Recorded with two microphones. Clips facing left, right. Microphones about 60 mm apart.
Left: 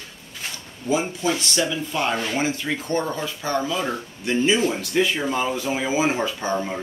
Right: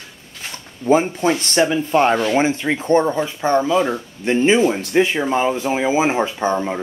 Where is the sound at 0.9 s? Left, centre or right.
Right.